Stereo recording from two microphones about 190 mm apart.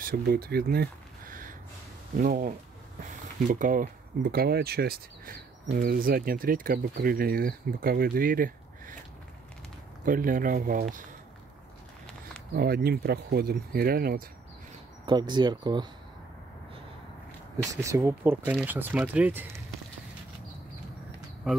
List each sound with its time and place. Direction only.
0.0 s speech: 55° right (ahead or behind)
10.0 s speech: 45° right (ahead or behind)
12.5 s speech: 55° right (ahead or behind)
15.0 s speech: 25° right (ahead or behind)
17.7 s speech: 15° right (ahead or behind)